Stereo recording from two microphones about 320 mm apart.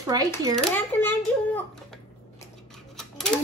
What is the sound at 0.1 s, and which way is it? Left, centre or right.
Speech, centre.